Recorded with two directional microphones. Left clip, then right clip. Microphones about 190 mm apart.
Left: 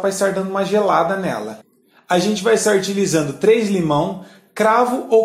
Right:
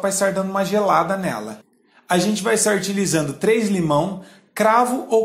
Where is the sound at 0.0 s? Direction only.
25° right (ahead or behind).